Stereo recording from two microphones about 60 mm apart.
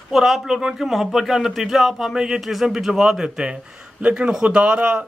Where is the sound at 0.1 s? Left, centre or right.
Centre.